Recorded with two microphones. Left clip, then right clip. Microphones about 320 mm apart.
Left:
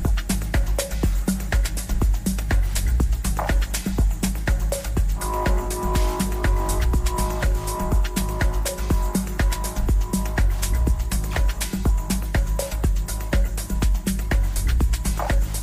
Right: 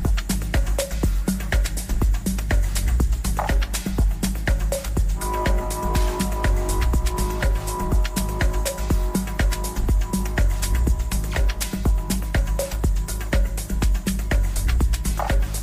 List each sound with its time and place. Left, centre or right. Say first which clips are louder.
0.0 s music: even; centre